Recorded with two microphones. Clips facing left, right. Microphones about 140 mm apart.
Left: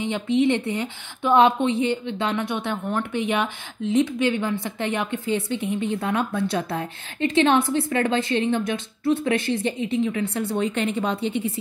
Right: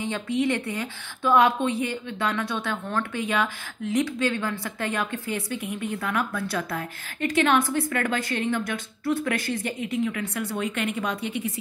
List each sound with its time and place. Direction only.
0.0 s a woman's voice: 20° left (ahead or behind)